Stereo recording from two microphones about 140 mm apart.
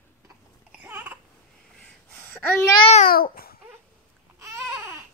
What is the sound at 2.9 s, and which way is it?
Babbling, 80° left.